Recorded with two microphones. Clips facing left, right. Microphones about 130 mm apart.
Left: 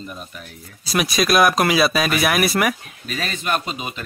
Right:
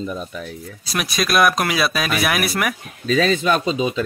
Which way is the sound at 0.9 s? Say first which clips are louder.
Left 2 dB; centre (ahead or behind).